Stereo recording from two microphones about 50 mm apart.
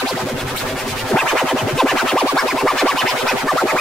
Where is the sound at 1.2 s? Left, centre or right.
Centre.